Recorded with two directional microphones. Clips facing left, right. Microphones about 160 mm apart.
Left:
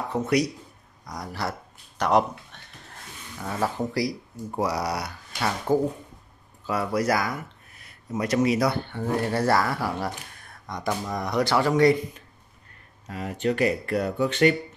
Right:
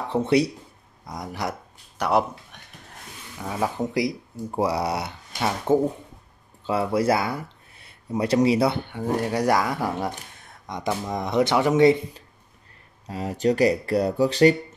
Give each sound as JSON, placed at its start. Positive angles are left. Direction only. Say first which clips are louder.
{"t": 0.1, "sound": "speech", "louder": "right 4 dB", "side_deg": -30}
{"t": 2.0, "sound": "speech", "louder": "left 1 dB", "side_deg": -5}
{"t": 8.8, "sound": "speech", "louder": "right 1 dB", "side_deg": -10}